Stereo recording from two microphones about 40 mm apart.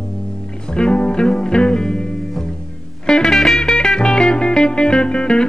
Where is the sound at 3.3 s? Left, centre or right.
Centre.